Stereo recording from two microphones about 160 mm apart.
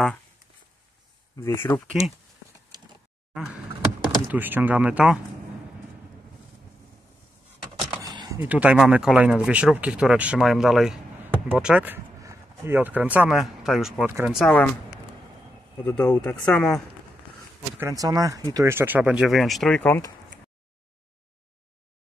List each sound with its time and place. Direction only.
1.3 s speech: 15° left (ahead or behind)
4.0 s speech: 10° right (ahead or behind)
8.0 s a sound: 25° right (ahead or behind)
8.4 s speech: 10° right (ahead or behind); by 14.7 s 5° left (ahead or behind)
15.8 s speech: 5° left (ahead or behind)
17.7 s speech: 20° right (ahead or behind); by 20.0 s 10° left (ahead or behind)